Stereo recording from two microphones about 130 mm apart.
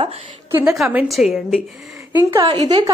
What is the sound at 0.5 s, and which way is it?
A woman's voice, 5° right (ahead or behind).